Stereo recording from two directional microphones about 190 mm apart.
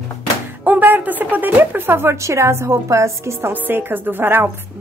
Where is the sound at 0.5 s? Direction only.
10° right (ahead or behind).